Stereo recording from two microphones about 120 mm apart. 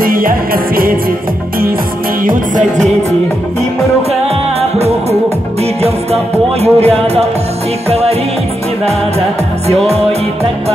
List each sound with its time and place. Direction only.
4.6 s music: 60° right (ahead or behind)
6.6 s speech: 60° right (ahead or behind)